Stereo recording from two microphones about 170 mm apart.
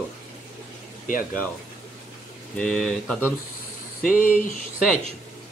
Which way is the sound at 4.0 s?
55° left (ahead or behind).